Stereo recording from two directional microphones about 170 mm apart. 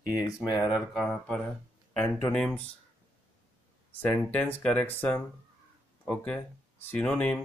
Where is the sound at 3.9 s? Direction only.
10° left (ahead or behind).